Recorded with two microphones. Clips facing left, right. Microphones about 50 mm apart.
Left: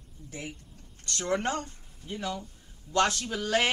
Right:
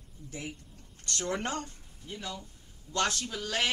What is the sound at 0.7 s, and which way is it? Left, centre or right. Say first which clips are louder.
A woman's voice: left 1 dB; left.